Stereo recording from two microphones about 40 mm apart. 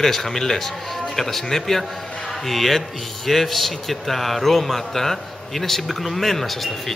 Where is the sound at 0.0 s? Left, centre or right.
Centre.